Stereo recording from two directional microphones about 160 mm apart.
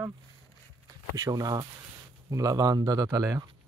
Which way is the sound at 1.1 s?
20° right (ahead or behind).